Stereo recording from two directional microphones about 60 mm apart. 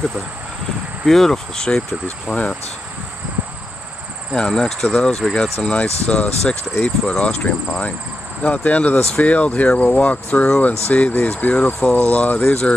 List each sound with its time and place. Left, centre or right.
1.0 s speech: centre
2.3 s speech: centre
4.3 s speech: centre; by 12.7 s left